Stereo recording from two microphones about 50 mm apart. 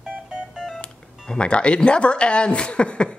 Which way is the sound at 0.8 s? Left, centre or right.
Centre.